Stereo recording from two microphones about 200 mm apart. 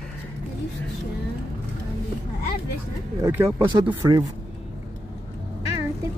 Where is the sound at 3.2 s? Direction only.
10° right (ahead or behind).